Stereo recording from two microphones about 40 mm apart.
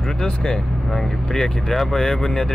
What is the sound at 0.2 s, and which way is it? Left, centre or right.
Speech, centre.